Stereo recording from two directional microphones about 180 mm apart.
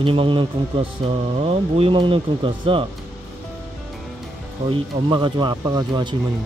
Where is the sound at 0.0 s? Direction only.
30° right (ahead or behind).